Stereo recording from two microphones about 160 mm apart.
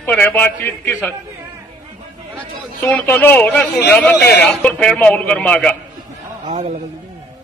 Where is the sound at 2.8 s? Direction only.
10° left (ahead or behind).